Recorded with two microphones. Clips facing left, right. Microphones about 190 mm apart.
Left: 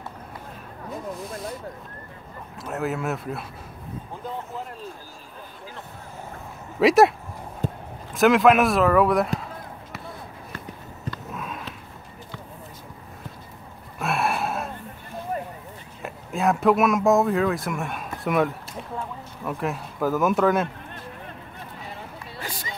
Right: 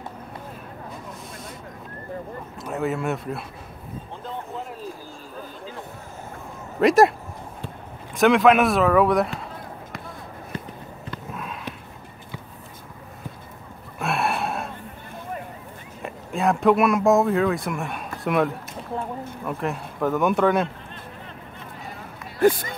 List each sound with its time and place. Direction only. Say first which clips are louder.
1.1 s snake: left 6 dB; centre (ahead or behind)
2.6 s speech: right 2 dB; centre (ahead or behind)
6.8 s speech: even; centre (ahead or behind)
7.6 s a sound: left 10 dB; 40° left (ahead or behind)
8.1 s speech: even; centre (ahead or behind)
11.3 s sniff: even; centre (ahead or behind)
13.9 s gasp: even; centre (ahead or behind)
16.0 s speech: right 1 dB; centre (ahead or behind)
22.4 s speech: right 18 dB; 55° right (ahead or behind)